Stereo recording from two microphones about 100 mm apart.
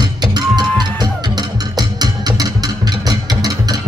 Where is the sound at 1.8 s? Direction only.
40° right (ahead or behind).